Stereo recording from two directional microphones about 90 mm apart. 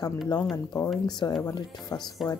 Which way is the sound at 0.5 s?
45° left (ahead or behind).